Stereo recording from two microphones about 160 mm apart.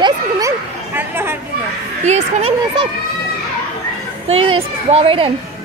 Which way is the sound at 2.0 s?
40° right (ahead or behind).